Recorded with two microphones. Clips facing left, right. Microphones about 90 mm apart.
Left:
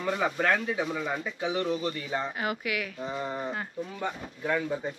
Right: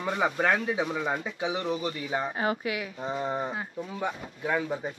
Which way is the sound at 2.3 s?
30° right (ahead or behind).